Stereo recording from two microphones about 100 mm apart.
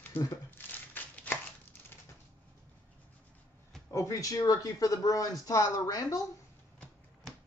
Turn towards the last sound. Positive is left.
turn(degrees=35)  # may be behind; listen again after turning